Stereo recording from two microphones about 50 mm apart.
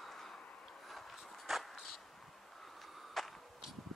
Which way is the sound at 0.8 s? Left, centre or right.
Centre.